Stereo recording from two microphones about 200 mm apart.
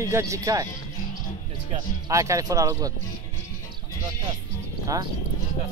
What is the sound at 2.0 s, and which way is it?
Speech, 15° right (ahead or behind).